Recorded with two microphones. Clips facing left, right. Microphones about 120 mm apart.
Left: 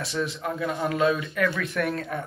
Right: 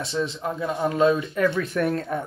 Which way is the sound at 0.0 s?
25° right (ahead or behind).